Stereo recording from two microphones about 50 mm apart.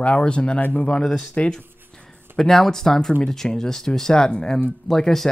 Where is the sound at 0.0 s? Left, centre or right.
Left.